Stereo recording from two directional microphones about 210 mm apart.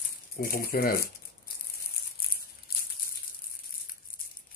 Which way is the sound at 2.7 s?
45° left (ahead or behind).